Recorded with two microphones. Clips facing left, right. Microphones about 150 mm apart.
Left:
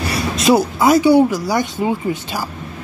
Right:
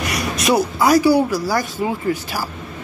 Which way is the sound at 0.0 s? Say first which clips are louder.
Left 3 dB; 30° left (ahead or behind).